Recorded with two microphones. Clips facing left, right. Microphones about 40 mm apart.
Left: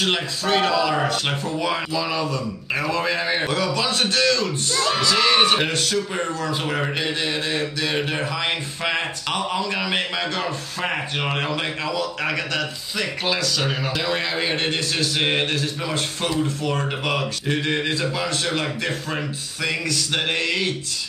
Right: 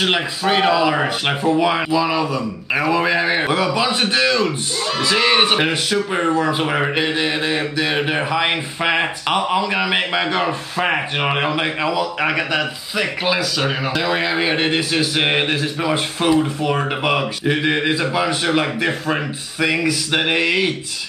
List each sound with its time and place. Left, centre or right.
0.0 s a man's voice: centre